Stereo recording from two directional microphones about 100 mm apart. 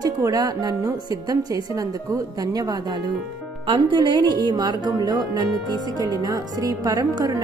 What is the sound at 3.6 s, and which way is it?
A woman's voice, 60° right (ahead or behind).